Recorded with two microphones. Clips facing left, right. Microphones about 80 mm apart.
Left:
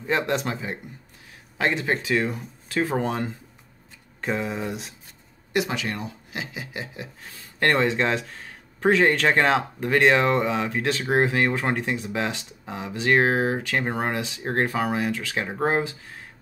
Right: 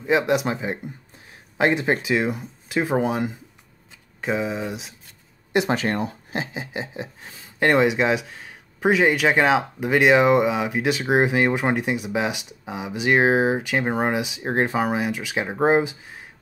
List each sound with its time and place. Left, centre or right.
0.0 s speech: centre
5.7 s speech: right; by 16.3 s centre